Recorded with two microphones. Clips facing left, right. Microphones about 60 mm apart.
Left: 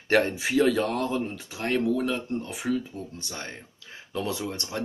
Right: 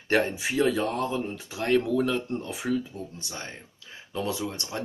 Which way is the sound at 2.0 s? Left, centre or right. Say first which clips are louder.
Right 1 dB; left.